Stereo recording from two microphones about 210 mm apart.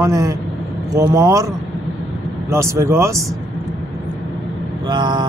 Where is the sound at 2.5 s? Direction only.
15° right (ahead or behind).